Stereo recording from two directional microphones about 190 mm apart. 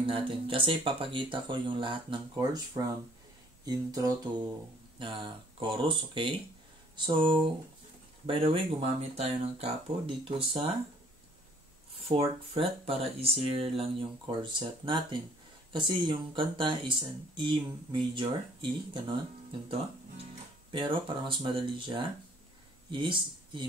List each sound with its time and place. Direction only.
0.0 s speech: 25° right (ahead or behind)
12.1 s speech: 30° right (ahead or behind)